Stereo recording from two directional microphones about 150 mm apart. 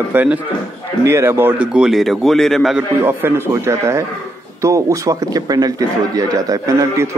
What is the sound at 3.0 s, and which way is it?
A man's voice, 15° right (ahead or behind).